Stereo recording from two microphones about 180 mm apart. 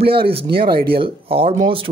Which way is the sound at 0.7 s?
55° right (ahead or behind).